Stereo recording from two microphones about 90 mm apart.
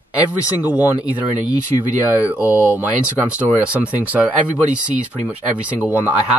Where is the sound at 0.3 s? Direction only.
15° right (ahead or behind).